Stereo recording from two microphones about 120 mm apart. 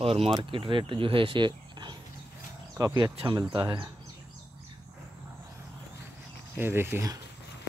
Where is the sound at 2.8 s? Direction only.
30° right (ahead or behind).